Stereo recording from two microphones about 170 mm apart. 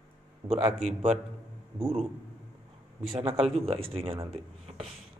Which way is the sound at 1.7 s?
35° right (ahead or behind).